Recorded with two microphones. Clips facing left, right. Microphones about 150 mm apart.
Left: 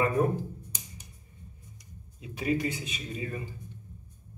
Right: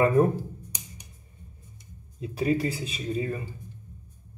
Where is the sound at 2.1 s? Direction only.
35° right (ahead or behind).